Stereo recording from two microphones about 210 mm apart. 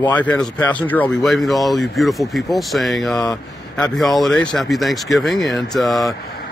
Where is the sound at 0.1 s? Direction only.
5° left (ahead or behind).